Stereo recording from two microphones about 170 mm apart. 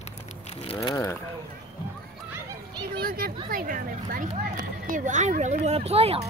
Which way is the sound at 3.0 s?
60° right (ahead or behind).